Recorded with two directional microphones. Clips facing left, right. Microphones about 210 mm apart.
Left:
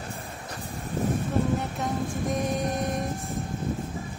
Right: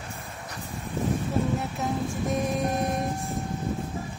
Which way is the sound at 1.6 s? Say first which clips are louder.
Even; centre (ahead or behind).